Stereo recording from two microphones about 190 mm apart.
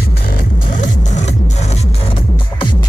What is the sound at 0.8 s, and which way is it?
Music, 40° left (ahead or behind).